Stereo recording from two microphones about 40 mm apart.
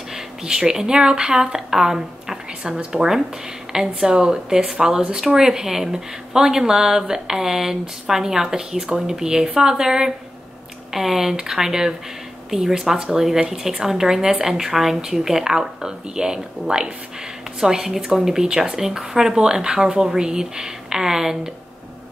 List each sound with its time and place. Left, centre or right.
0.1 s speech: centre